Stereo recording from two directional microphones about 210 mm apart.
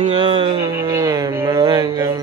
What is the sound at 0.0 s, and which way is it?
Speech, 25° right (ahead or behind).